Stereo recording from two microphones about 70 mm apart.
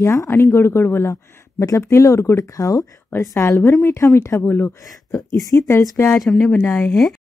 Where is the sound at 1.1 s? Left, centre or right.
Left.